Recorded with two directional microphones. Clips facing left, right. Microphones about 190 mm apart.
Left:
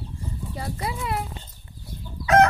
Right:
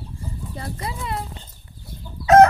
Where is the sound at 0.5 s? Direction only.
5° left (ahead or behind).